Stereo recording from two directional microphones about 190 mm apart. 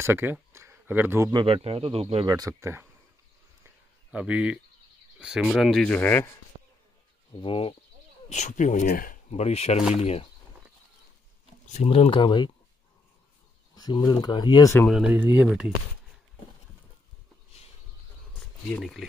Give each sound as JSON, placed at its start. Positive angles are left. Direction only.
{"t": 0.0, "sound": "speech", "side_deg": -10}
{"t": 1.3, "sound": "speech", "side_deg": -30}
{"t": 2.3, "sound": "speech", "side_deg": -15}
{"t": 3.6, "sound": "a sound", "side_deg": -5}
{"t": 5.2, "sound": "speech", "side_deg": -5}
{"t": 7.3, "sound": "speech", "side_deg": 25}
{"t": 8.3, "sound": "speech", "side_deg": 40}
{"t": 11.6, "sound": "speech", "side_deg": 35}
{"t": 13.7, "sound": "speech", "side_deg": 20}
{"t": 14.9, "sound": "speech", "side_deg": -5}
{"t": 18.7, "sound": "speech", "side_deg": 5}